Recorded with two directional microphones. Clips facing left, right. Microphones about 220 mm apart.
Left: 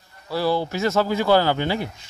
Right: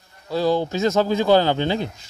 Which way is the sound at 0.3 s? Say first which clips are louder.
Right 2 dB; 20° right (ahead or behind).